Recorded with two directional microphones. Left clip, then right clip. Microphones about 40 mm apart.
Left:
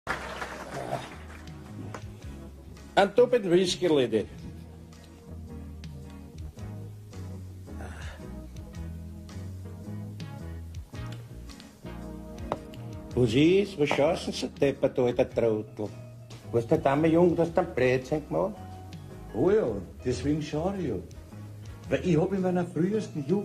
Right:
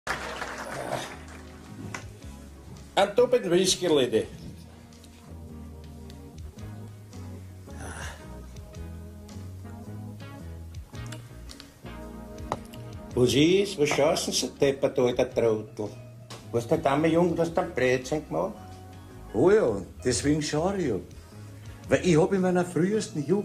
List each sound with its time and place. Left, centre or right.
0.0 s a sound: centre
2.9 s speech: centre
7.8 s music: centre
13.1 s speech: centre
19.3 s a man's voice: right
21.8 s a man's voice: right